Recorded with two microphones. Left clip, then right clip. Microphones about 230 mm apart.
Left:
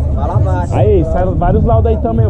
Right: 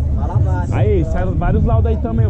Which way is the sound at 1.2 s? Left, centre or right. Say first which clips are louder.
Left 7 dB; right.